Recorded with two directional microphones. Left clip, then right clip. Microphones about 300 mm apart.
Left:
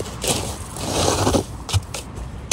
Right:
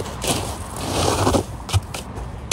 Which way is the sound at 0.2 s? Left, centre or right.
Centre.